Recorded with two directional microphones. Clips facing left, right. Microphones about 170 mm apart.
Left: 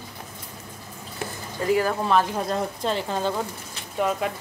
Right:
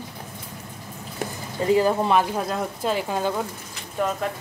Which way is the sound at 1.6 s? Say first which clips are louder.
Right 3 dB; 20° right (ahead or behind).